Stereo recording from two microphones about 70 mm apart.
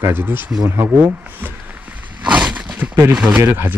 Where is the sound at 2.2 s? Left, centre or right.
Centre.